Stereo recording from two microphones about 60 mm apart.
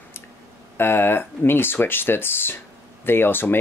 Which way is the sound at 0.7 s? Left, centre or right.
Left.